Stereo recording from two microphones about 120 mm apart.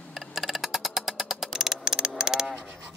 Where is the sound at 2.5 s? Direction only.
20° right (ahead or behind).